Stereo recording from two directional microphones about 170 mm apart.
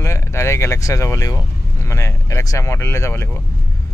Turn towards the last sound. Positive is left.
turn(degrees=15)  # may be behind; listen again after turning